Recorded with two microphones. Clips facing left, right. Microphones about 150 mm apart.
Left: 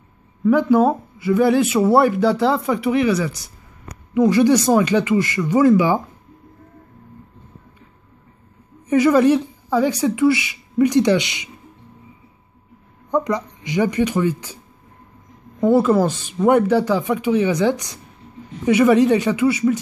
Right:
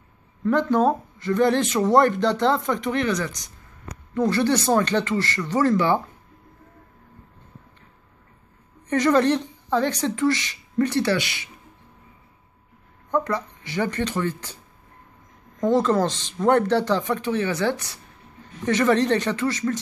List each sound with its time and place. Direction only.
0.4 s speech: 10° left (ahead or behind)
8.8 s speech: 10° left (ahead or behind)
13.1 s speech: 15° left (ahead or behind)
15.6 s speech: 10° left (ahead or behind)